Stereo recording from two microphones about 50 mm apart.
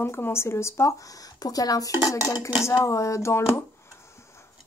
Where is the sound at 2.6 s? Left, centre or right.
Left.